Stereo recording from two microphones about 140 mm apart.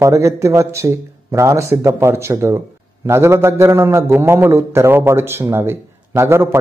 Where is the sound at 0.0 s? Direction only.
20° right (ahead or behind).